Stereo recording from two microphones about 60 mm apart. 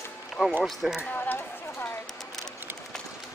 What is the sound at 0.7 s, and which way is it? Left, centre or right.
Speech, centre.